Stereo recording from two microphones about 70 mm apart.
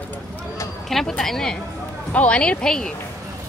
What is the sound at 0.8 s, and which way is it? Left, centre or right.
A woman's voice, centre.